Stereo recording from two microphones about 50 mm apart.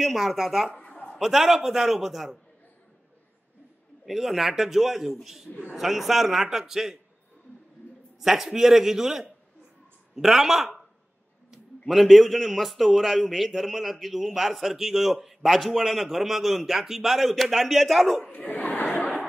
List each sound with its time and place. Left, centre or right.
0.0 s a man's voice: centre
4.0 s a man's voice: centre
8.2 s a man's voice: centre
11.9 s a man's voice: centre
18.3 s chatter: left